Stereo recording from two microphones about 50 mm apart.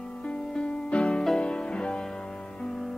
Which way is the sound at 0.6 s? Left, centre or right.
Left.